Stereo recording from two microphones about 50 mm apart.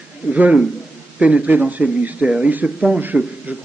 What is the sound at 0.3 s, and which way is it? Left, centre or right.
A man's voice, right.